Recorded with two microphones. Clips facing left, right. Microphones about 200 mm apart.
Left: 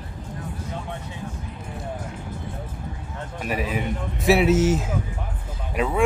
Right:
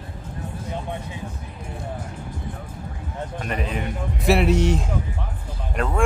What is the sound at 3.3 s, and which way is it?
Speech, 5° left (ahead or behind).